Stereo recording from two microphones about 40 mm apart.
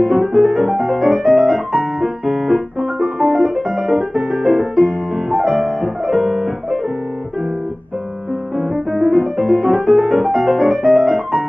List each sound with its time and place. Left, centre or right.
0.0 s music: centre
8.9 s music: centre